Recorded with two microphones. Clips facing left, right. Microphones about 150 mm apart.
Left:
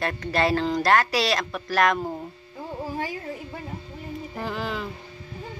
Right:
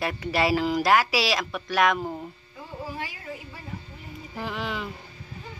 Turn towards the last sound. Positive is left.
turn(degrees=0)  # may be behind; listen again after turning